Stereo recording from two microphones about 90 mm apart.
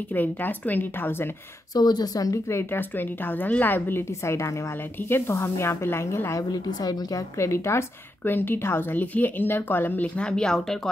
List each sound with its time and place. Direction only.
0.1 s a woman's voice: 20° left (ahead or behind)
1.7 s speech: 50° left (ahead or behind)
2.5 s a woman's voice: 25° left (ahead or behind)
6.5 s speech: 45° left (ahead or behind)
7.3 s a woman's voice: 30° left (ahead or behind); by 10.8 s 5° left (ahead or behind)